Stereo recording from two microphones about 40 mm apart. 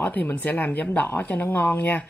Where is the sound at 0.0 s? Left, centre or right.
Left.